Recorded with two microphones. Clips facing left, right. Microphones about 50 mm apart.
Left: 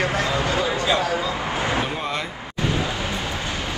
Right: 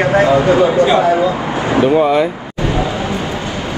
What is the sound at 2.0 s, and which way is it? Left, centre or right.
Speech, centre.